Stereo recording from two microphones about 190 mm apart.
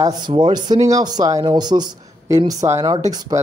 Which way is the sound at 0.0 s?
20° right (ahead or behind).